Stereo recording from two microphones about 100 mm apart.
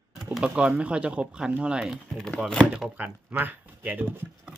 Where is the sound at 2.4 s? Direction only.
10° left (ahead or behind).